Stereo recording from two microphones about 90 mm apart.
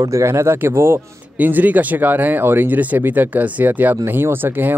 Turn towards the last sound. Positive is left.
turn(degrees=-20)  # may be behind; listen again after turning